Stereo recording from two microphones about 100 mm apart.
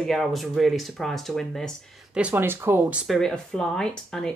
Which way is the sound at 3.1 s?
5° left (ahead or behind).